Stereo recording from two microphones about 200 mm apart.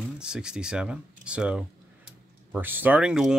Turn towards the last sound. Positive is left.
turn(degrees=-5)  # may be behind; listen again after turning